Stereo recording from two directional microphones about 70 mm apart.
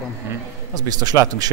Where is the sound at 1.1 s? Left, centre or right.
Right.